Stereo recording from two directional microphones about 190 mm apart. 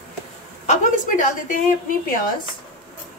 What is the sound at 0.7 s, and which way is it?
Speech, 45° left (ahead or behind).